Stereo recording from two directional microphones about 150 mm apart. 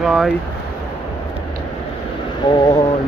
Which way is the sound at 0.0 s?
Centre (ahead or behind).